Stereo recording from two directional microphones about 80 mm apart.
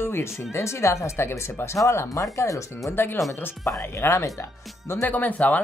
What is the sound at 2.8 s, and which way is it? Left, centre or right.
Speech, left.